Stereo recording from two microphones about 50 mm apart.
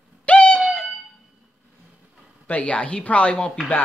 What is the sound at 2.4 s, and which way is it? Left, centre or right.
Speech, left.